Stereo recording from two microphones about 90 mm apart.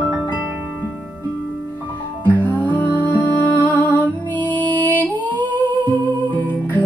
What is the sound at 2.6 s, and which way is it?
Music, 20° left (ahead or behind).